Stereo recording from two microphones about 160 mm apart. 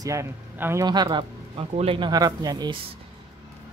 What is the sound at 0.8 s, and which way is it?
Speech, 25° right (ahead or behind).